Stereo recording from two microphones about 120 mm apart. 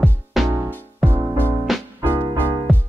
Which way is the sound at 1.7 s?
Centre (ahead or behind).